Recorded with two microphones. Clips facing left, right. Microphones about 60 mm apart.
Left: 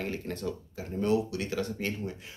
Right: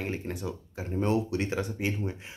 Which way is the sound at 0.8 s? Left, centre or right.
Right.